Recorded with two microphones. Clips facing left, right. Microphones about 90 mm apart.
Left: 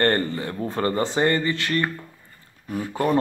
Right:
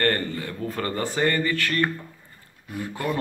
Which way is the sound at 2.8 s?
40° left (ahead or behind).